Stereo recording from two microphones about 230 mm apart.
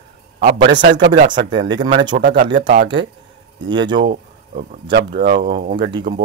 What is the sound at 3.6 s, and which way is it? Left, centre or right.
Speech, right.